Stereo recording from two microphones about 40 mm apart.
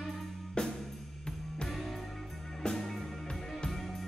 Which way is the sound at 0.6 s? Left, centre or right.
Left.